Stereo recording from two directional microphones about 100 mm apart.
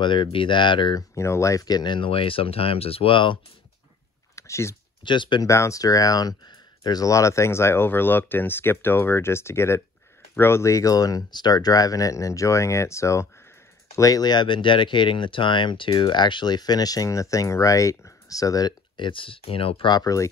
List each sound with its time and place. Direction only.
0.0 s speech: 55° left (ahead or behind)
0.9 s speech: 30° left (ahead or behind); by 3.3 s 60° left (ahead or behind)
4.4 s speech: 30° left (ahead or behind)
5.0 s speech: 50° left (ahead or behind)
5.4 s speech: 30° left (ahead or behind)
18.9 s speech: 55° left (ahead or behind)
19.9 s speech: 35° left (ahead or behind)